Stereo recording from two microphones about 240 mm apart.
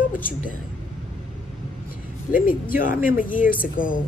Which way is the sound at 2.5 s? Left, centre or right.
Left.